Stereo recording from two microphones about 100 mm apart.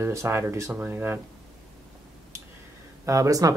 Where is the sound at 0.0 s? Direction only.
30° right (ahead or behind).